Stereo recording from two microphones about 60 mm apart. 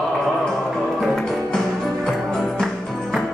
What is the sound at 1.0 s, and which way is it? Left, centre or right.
Music, centre.